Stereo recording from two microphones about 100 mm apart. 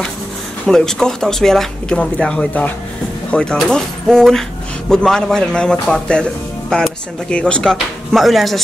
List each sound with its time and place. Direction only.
0.7 s speech: 5° left (ahead or behind)